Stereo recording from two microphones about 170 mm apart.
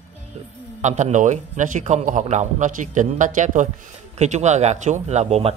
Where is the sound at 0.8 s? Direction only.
45° right (ahead or behind).